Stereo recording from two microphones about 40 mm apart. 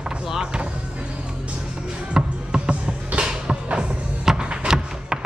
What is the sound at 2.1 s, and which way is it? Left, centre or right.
Music, right.